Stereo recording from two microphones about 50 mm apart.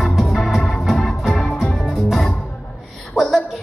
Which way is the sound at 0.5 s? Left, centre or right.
Centre.